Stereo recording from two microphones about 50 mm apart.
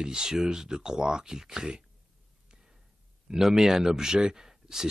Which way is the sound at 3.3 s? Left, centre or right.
Centre.